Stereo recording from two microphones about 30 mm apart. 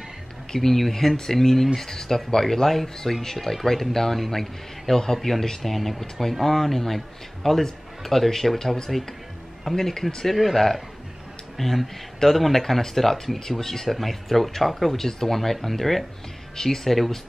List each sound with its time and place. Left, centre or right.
0.5 s speech: centre
1.1 s speech: centre
5.6 s speech: centre
10.3 s speech: centre
15.0 s speech: centre
15.3 s speech: centre